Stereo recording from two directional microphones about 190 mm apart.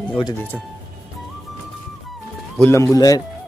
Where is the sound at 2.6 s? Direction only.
15° left (ahead or behind).